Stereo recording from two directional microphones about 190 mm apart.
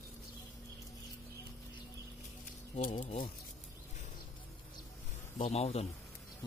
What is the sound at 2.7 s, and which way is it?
Speech, 45° left (ahead or behind).